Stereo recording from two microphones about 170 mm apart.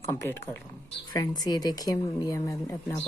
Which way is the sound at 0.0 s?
15° left (ahead or behind).